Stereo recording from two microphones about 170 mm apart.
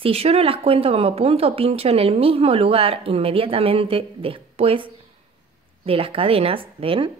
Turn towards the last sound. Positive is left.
turn(degrees=-30)  # may be behind; listen again after turning